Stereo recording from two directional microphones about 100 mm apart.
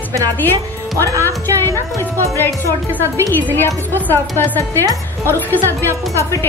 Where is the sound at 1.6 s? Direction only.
25° left (ahead or behind).